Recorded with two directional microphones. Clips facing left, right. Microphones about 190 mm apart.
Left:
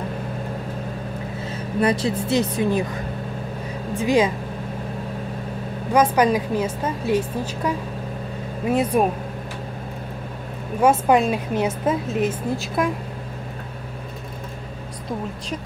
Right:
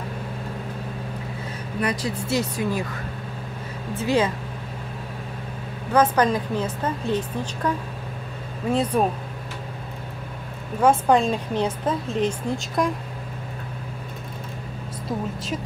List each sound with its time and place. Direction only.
1.8 s speech: 25° left (ahead or behind)
4.0 s a woman's voice: 15° left (ahead or behind)
5.9 s a woman's voice: 10° left (ahead or behind)
10.8 s a woman's voice: 10° left (ahead or behind)